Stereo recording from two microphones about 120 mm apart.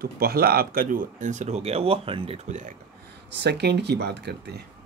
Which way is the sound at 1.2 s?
85° right.